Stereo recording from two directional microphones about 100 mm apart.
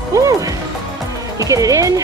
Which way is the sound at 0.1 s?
35° right (ahead or behind).